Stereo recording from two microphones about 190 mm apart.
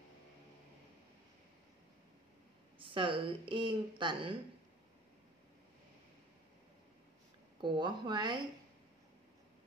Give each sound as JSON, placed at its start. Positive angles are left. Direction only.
{"t": 2.8, "sound": "speech", "side_deg": -25}
{"t": 7.6, "sound": "speech", "side_deg": -25}